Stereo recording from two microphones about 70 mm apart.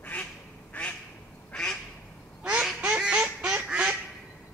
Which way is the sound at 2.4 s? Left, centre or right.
Centre.